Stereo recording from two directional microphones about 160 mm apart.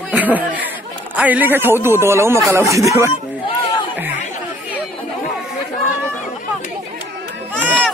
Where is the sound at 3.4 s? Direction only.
30° left (ahead or behind).